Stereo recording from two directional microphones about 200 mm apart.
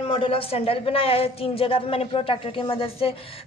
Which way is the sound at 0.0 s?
25° left (ahead or behind).